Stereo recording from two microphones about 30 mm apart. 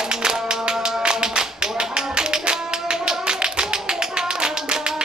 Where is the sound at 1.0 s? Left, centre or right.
Right.